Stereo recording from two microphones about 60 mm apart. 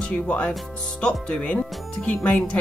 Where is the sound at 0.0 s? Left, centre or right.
Left.